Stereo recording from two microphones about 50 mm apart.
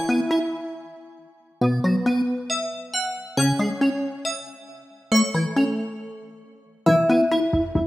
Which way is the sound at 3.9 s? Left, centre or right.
Right.